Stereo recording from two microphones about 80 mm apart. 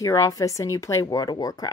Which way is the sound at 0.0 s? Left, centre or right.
Left.